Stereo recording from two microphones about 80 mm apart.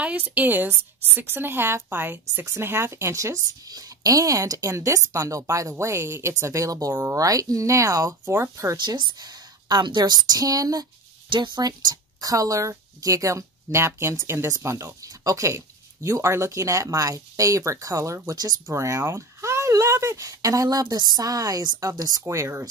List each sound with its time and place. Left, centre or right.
0.0 s speech: centre; by 3.3 s right
3.6 s speech: right
6.9 s speech: right
7.2 s speech: right
8.7 s a woman's voice: right
11.2 s speech: right
18.3 s a woman's voice: right
18.7 s a woman's voice: right
22.2 s speech: right